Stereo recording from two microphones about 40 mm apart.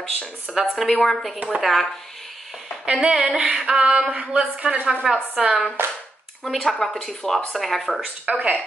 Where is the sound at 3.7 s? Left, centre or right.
Right.